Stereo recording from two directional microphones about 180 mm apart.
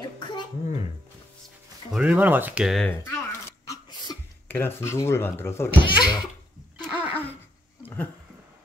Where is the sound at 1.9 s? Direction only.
5° right (ahead or behind).